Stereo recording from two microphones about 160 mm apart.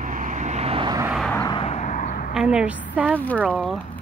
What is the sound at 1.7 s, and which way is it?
Vehicle, 50° left (ahead or behind).